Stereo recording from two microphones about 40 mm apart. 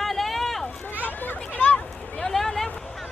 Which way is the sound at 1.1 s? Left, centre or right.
Left.